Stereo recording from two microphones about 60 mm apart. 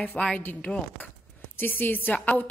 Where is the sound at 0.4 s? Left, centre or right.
Left.